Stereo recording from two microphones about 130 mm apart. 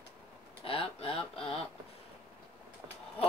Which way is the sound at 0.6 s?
45° left (ahead or behind).